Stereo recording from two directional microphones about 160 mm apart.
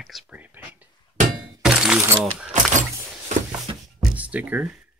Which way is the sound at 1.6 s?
5° right (ahead or behind).